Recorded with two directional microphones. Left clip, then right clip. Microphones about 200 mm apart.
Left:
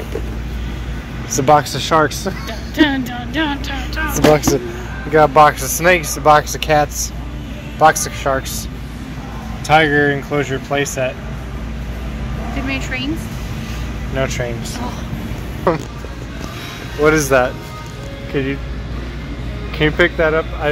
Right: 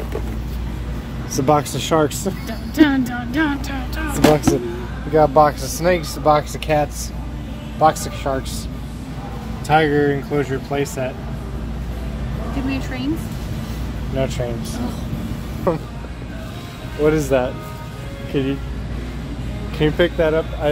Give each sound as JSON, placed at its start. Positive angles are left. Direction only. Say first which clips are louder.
{"t": 1.3, "sound": "speech", "louder": "left 5 dB", "side_deg": -5}
{"t": 2.7, "sound": "music", "louder": "even", "side_deg": -50}
{"t": 4.2, "sound": "speech", "louder": "left 2 dB", "side_deg": -5}
{"t": 9.7, "sound": "speech", "louder": "left 3 dB", "side_deg": 5}
{"t": 12.6, "sound": "speech", "louder": "left 4 dB", "side_deg": -25}
{"t": 14.1, "sound": "speech", "louder": "left 3 dB", "side_deg": -10}
{"t": 15.7, "sound": "speech", "louder": "left 4 dB", "side_deg": 10}
{"t": 17.0, "sound": "speech", "louder": "left 4 dB", "side_deg": -5}
{"t": 19.8, "sound": "speech", "louder": "left 3 dB", "side_deg": -10}